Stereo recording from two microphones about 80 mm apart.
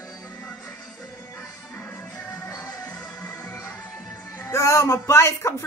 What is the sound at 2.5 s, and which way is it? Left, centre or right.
Music, left.